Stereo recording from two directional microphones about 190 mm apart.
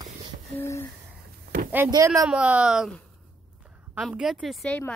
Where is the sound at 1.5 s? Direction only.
50° right (ahead or behind).